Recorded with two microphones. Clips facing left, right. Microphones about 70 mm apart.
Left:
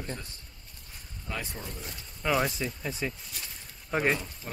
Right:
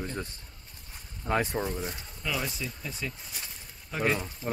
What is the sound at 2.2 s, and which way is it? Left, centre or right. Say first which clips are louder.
Speech: left 6 dB; left.